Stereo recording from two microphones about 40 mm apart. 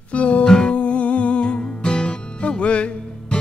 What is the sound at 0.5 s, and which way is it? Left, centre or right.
Music, centre.